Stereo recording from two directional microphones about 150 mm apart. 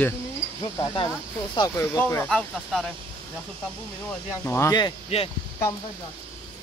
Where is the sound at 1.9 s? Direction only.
10° left (ahead or behind).